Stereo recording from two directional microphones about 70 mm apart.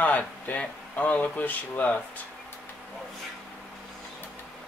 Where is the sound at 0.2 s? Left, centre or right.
Left.